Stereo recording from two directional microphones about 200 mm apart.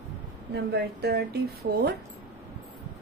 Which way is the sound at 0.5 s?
55° right (ahead or behind).